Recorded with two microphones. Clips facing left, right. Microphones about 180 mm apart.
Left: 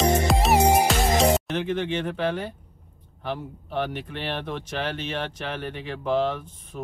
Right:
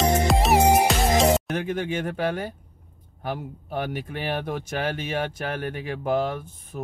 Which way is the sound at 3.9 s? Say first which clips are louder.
Right 2 dB; 10° right (ahead or behind).